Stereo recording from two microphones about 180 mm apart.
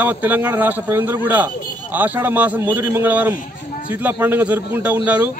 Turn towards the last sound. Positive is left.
turn(degrees=-10)  # may be behind; listen again after turning